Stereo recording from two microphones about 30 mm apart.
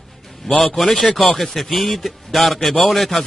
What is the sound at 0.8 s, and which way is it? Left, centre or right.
Speech, left.